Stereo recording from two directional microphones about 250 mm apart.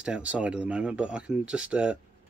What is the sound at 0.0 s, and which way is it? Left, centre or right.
Speech, centre.